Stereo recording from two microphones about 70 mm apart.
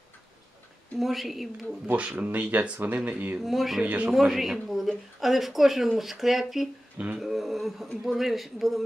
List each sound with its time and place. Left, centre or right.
0.9 s speech: centre
1.9 s speech: right
3.3 s speech: centre
3.8 s speech: centre
4.1 s a man's voice: centre